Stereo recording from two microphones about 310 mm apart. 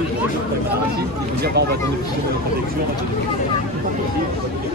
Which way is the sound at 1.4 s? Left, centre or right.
Right.